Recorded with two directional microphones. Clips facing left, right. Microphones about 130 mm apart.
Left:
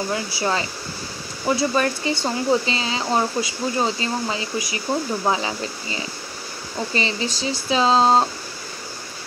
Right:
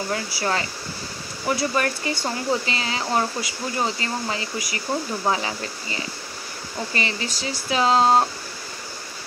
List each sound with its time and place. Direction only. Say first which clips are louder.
0.1 s speech: right 1 dB; 20° left (ahead or behind)